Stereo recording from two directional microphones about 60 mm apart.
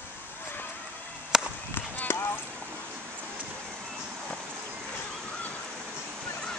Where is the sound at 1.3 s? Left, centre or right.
Centre.